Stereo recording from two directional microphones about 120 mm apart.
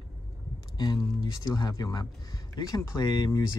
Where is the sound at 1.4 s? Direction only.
35° left (ahead or behind).